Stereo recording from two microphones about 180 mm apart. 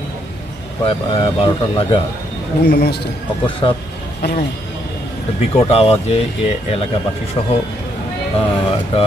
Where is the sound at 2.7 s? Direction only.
65° left (ahead or behind).